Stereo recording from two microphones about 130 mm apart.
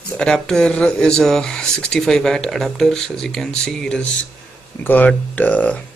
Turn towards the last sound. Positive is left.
turn(degrees=10)  # may be behind; listen again after turning